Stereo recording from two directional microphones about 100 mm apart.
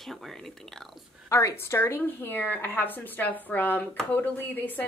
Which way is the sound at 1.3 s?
30° left (ahead or behind).